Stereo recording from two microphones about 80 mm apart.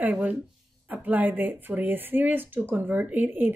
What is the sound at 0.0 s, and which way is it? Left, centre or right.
Speech, centre.